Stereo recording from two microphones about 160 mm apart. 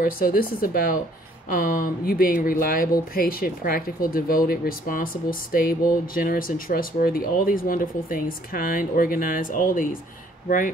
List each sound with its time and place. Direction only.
0.0 s speech: 65° left (ahead or behind)